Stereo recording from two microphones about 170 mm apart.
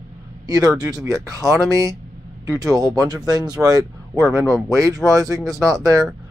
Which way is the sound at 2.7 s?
20° right (ahead or behind).